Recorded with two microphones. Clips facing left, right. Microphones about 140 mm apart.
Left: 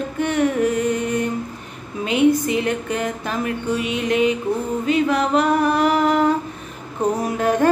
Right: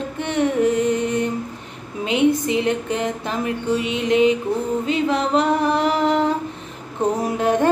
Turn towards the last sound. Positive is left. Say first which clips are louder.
# even
turn(degrees=-20)  # may be behind; listen again after turning